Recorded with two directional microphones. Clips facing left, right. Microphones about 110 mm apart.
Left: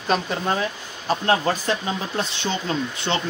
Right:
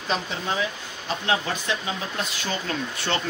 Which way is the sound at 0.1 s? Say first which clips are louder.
Left 5 dB; 45° left (ahead or behind).